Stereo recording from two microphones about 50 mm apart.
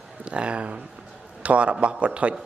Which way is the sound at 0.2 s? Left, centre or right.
Right.